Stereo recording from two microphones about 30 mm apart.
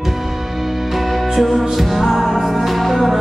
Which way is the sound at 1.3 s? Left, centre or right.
Centre.